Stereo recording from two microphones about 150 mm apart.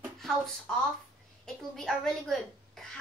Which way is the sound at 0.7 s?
5° left (ahead or behind).